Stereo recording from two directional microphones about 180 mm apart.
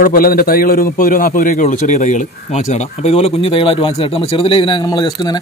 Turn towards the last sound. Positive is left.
turn(degrees=20)  # may be behind; listen again after turning